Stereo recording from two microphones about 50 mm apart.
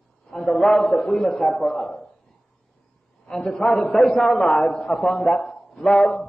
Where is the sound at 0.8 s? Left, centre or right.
Left.